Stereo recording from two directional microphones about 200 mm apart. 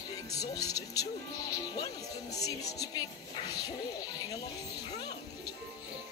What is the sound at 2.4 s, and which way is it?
Speech, 20° left (ahead or behind).